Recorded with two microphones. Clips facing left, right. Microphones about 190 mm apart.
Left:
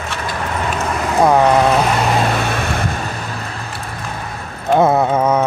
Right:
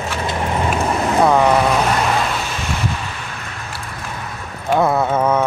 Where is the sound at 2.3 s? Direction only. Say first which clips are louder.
Left 5 dB; 60° left (ahead or behind).